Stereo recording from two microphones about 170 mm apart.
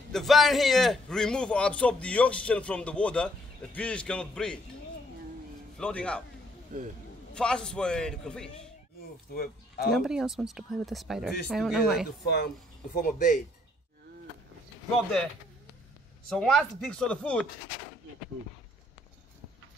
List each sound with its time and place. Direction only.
0.1 s a man's voice: centre (ahead or behind)
5.8 s a man's voice: 5° left (ahead or behind)
6.7 s speech: 45° right (ahead or behind)
7.3 s speech: 5° left (ahead or behind)
9.3 s speech: 65° left (ahead or behind)
9.8 s speech: centre (ahead or behind)
12.9 s speech: 55° left (ahead or behind)
16.3 s speech: 5° left (ahead or behind)